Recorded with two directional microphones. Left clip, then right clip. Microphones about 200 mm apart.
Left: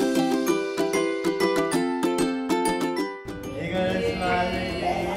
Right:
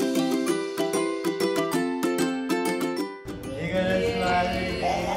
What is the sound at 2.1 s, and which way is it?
Music, 10° left (ahead or behind).